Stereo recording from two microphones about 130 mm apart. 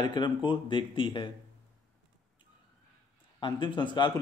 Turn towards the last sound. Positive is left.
turn(degrees=35)  # may be behind; listen again after turning